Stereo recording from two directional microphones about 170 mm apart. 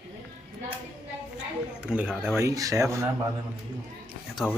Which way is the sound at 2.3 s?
20° right (ahead or behind).